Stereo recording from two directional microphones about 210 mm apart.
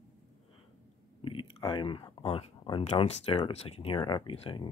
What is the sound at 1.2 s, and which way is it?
Speech, 25° left (ahead or behind).